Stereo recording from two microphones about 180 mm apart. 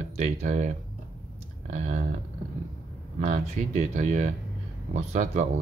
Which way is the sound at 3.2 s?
40° right (ahead or behind).